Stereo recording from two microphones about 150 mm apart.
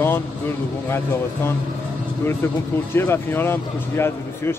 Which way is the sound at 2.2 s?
15° left (ahead or behind).